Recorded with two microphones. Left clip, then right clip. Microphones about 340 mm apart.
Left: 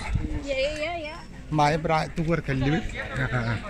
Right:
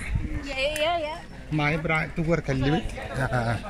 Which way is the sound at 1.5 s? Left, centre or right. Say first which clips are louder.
Left 3 dB; centre.